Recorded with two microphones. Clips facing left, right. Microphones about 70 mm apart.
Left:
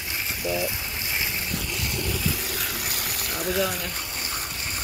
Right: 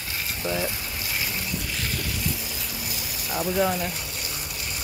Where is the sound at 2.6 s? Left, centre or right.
Left.